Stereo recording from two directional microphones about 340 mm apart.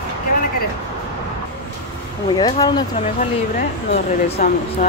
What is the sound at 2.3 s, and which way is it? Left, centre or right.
Speech, centre.